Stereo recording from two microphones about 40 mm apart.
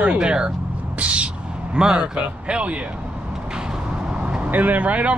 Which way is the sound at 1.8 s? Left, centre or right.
Right.